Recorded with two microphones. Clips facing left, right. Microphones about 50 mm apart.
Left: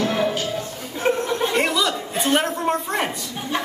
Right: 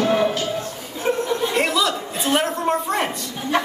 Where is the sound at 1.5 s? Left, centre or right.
Centre.